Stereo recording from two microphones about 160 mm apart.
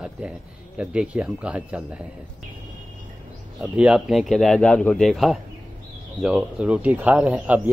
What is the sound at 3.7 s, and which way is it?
Speech, 5° right (ahead or behind).